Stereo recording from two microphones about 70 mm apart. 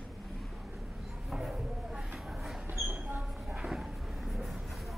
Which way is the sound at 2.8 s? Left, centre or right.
Right.